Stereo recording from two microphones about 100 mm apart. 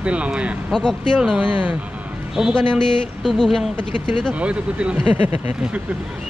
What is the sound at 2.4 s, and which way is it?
Speech, 5° left (ahead or behind).